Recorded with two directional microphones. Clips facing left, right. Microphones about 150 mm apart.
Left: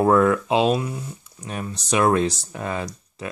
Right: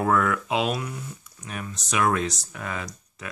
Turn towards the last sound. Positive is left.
turn(degrees=30)  # may be behind; listen again after turning